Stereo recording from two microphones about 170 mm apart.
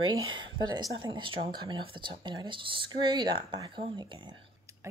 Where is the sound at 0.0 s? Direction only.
25° right (ahead or behind).